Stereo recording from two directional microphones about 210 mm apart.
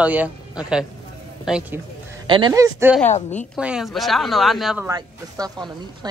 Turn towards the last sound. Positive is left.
turn(degrees=-20)  # may be behind; listen again after turning